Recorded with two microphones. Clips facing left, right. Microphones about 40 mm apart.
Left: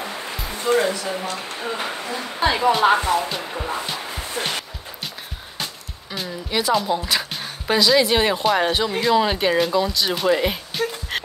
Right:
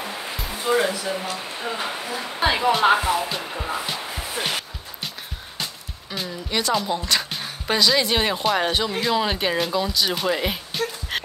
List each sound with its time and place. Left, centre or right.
0.0 s music: centre
0.7 s speech: centre
6.1 s speech: centre